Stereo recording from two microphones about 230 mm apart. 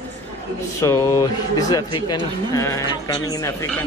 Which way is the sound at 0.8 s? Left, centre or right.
Centre.